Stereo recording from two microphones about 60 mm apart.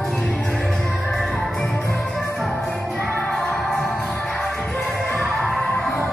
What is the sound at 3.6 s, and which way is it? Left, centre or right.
Music, centre.